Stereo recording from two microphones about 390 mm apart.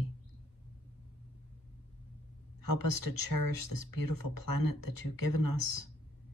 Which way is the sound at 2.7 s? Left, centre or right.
Left.